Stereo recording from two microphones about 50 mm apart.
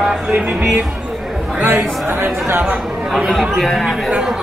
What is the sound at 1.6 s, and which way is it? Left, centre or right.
Speech, right.